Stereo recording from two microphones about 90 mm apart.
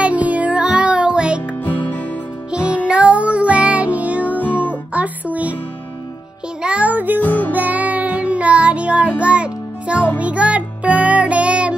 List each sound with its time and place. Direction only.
0.0 s music: 15° right (ahead or behind)
2.5 s music: 10° right (ahead or behind)
4.4 s music: 20° left (ahead or behind)
4.9 s music: 15° right (ahead or behind)
6.6 s music: 15° right (ahead or behind)
7.2 s music: 20° left (ahead or behind)
7.5 s music: 20° right (ahead or behind)